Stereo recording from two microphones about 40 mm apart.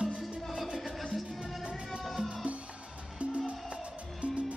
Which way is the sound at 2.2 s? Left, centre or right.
Right.